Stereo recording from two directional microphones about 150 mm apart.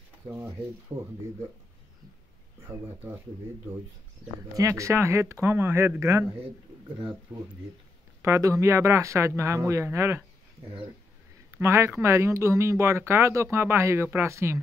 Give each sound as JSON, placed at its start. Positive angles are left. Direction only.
{"t": 0.9, "sound": "speech", "side_deg": -20}
{"t": 2.7, "sound": "speech", "side_deg": -15}
{"t": 4.6, "sound": "speech", "side_deg": -20}
{"t": 8.2, "sound": "speech", "side_deg": -20}
{"t": 11.5, "sound": "speech", "side_deg": -20}